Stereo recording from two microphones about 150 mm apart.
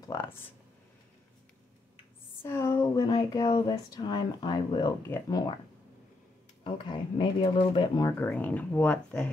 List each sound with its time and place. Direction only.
2.4 s speech: 15° left (ahead or behind)
5.0 s speech: 15° left (ahead or behind)
6.6 s speech: 30° left (ahead or behind)
8.2 s speech: 10° left (ahead or behind)